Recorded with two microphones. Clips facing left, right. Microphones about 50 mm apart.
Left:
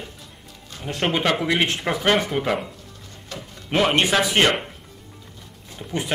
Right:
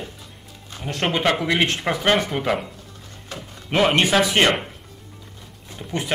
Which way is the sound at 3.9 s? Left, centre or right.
Centre.